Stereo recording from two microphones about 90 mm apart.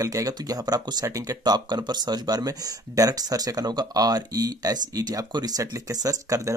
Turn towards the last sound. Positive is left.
turn(degrees=-35)  # may be behind; listen again after turning